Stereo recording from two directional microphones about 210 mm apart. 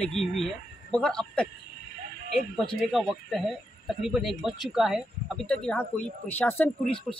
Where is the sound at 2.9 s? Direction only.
Centre (ahead or behind).